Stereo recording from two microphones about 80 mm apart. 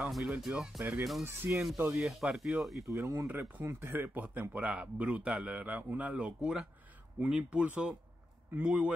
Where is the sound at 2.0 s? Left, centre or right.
Centre.